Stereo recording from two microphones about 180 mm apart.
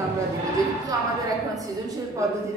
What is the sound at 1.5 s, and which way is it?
Speech, 20° right (ahead or behind).